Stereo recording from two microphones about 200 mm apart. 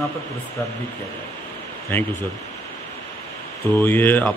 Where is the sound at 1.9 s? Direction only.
10° left (ahead or behind).